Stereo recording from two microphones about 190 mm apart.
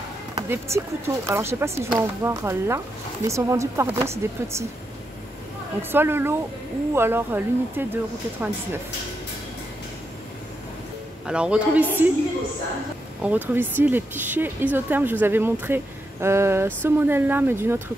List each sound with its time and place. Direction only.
0.4 s speech: 15° right (ahead or behind)
5.8 s speech: 10° right (ahead or behind)
11.2 s speech: 5° right (ahead or behind)
13.2 s speech: 10° right (ahead or behind)